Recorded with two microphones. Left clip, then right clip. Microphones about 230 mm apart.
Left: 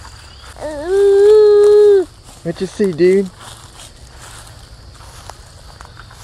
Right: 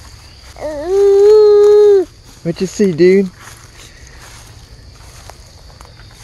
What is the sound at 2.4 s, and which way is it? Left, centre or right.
Speech, right.